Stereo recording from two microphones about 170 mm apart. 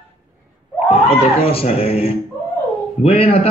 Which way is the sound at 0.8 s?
35° left (ahead or behind).